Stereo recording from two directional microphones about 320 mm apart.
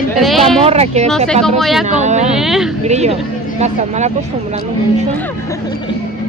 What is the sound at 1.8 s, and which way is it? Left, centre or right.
Speech, right.